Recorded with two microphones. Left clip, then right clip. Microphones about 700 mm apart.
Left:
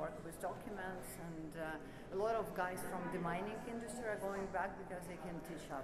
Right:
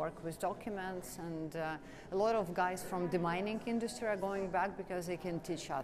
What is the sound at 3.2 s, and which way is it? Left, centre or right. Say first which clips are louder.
A woman's voice: right 6 dB; right.